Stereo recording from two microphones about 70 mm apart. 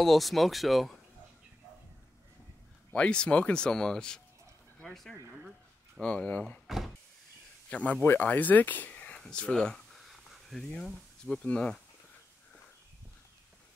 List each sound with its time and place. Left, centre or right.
0.0 s speech: centre
2.9 s speech: centre
5.9 s speech: centre
6.7 s speech: centre
7.7 s speech: centre
8.0 s a sound: left; by 10.6 s centre
11.4 s speech: centre